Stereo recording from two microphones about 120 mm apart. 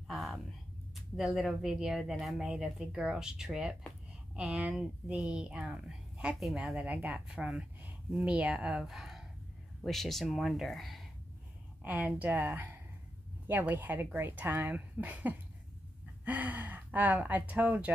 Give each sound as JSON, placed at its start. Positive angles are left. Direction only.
{"t": 0.1, "sound": "speech", "side_deg": 0}
{"t": 11.8, "sound": "speech", "side_deg": -15}